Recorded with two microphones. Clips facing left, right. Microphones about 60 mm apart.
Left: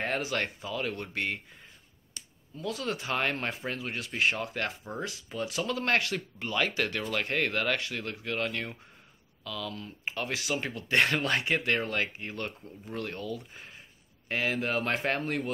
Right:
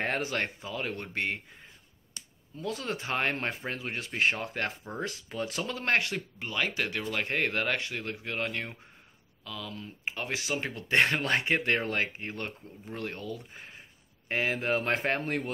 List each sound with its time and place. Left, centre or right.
0.0 s a sound: right
0.4 s speech: right
2.5 s speech: right